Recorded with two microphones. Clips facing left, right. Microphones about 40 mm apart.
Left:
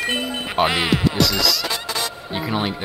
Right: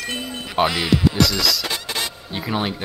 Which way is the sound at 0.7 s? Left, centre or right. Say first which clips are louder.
Even; left.